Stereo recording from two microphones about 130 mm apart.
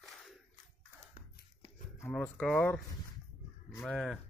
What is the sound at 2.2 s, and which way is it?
Speech, 10° left (ahead or behind).